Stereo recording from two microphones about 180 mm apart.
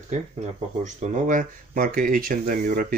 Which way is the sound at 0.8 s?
45° right (ahead or behind).